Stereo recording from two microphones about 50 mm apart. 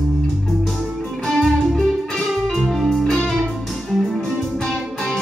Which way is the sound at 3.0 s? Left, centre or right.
Centre.